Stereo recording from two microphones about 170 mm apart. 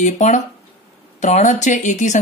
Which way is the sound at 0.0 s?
45° left (ahead or behind).